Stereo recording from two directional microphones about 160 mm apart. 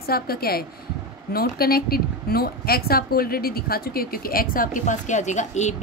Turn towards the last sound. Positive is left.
turn(degrees=45)  # may be behind; listen again after turning